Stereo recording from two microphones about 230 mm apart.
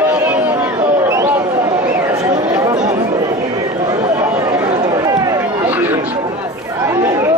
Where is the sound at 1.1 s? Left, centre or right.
Centre.